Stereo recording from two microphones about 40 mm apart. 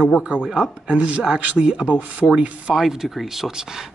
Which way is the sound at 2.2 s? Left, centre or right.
Left.